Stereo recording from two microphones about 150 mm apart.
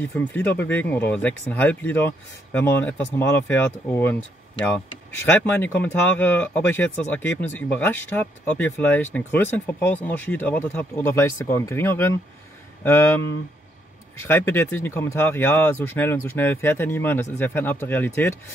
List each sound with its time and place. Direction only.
0.1 s speech: 15° left (ahead or behind)